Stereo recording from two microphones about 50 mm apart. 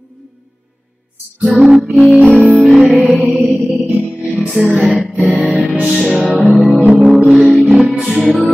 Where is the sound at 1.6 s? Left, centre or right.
Centre.